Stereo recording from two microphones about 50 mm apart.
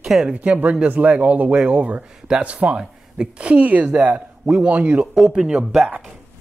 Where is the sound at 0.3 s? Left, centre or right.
Right.